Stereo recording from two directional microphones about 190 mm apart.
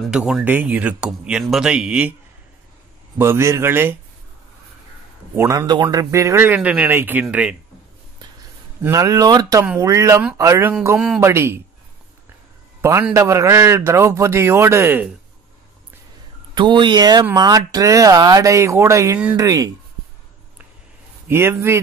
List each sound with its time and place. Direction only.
0.1 s speech: 5° right (ahead or behind)
3.2 s a man's voice: 15° right (ahead or behind)
5.3 s a man's voice: 15° right (ahead or behind)
8.8 s a man's voice: 15° right (ahead or behind)
12.8 s a man's voice: 15° right (ahead or behind)
16.5 s speech: 25° right (ahead or behind)
21.3 s a man's voice: 15° right (ahead or behind)